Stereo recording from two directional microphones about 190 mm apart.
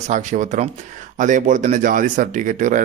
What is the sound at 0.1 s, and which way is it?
Speech, 40° right (ahead or behind).